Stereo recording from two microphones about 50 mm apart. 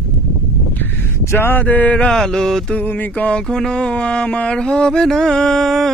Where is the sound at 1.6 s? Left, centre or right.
Left.